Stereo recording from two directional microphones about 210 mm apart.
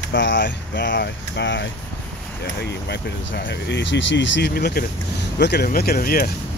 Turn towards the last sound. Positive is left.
turn(degrees=45)  # may be behind; listen again after turning